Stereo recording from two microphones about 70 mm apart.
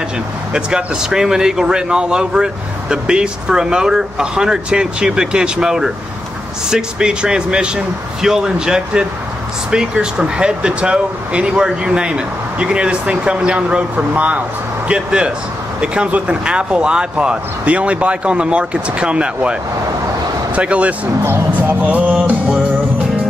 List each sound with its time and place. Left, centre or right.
0.5 s speech: centre
20.5 s speech: centre
21.5 s music: right